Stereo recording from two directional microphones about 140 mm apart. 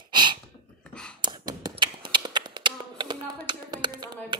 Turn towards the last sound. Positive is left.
turn(degrees=-30)  # may be behind; listen again after turning